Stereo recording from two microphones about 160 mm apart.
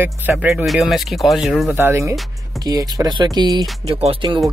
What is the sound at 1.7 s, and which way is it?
Speech, 15° right (ahead or behind).